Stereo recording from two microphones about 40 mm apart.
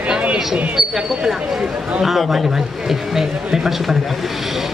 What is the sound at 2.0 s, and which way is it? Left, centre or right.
A man's voice, centre.